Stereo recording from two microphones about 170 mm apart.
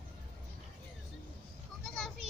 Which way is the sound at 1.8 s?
Centre (ahead or behind).